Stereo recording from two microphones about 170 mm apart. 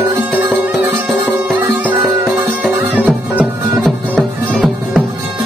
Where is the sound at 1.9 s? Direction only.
20° right (ahead or behind).